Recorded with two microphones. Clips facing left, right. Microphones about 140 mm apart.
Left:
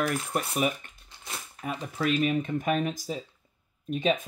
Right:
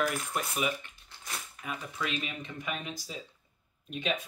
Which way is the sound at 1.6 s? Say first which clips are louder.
Left 7 dB; 40° left (ahead or behind).